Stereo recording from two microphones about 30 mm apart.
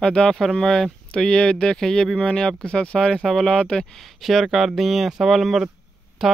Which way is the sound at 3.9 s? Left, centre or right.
Centre.